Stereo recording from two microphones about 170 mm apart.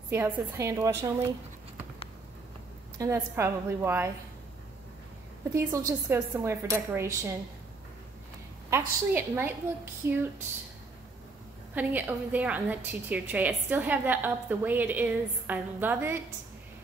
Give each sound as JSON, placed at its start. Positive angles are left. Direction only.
{"t": 0.1, "sound": "a woman's voice", "side_deg": -15}
{"t": 3.0, "sound": "a woman's voice", "side_deg": -15}
{"t": 5.5, "sound": "a woman's voice", "side_deg": -20}
{"t": 8.6, "sound": "a woman's voice", "side_deg": -15}
{"t": 11.7, "sound": "a woman's voice", "side_deg": -10}